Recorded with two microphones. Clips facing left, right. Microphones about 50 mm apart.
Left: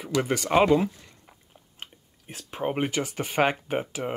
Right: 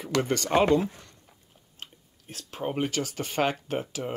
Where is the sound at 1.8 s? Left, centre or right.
Centre.